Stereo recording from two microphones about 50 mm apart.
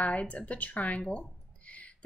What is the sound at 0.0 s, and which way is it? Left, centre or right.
A woman's voice, left.